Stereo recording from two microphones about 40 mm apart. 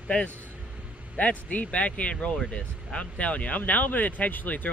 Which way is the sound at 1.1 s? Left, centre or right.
Left.